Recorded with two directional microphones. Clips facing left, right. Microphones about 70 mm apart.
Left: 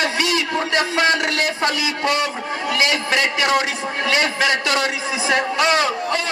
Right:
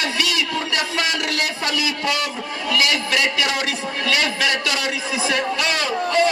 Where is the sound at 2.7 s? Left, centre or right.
Left.